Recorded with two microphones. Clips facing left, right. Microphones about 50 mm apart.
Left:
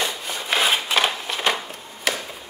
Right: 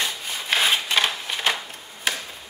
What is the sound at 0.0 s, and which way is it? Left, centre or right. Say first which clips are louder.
Rub: left 2 dB; centre.